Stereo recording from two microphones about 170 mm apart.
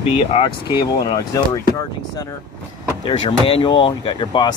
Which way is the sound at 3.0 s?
30° left (ahead or behind).